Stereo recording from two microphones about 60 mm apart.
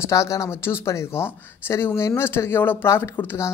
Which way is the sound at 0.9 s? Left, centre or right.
Left.